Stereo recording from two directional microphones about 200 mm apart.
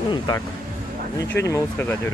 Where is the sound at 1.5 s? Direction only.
15° left (ahead or behind).